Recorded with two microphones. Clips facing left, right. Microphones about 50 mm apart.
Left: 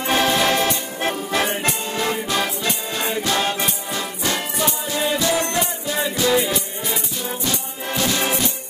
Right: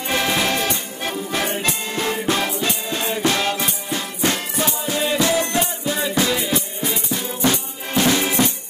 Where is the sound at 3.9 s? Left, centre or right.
Right.